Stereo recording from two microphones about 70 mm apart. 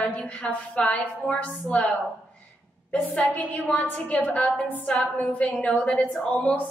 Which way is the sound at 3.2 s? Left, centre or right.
Left.